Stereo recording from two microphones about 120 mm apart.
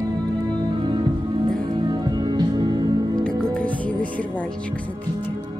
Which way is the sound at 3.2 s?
10° left (ahead or behind).